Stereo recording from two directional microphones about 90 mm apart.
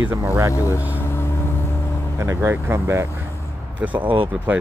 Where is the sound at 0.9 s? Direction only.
25° left (ahead or behind).